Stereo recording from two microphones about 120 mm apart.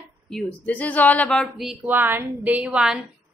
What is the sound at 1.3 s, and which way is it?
Speech, centre (ahead or behind).